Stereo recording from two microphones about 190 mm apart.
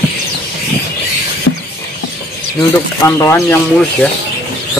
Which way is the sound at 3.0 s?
15° left (ahead or behind).